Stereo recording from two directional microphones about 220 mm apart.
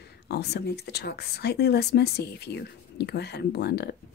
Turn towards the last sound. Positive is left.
turn(degrees=50)  # may be behind; listen again after turning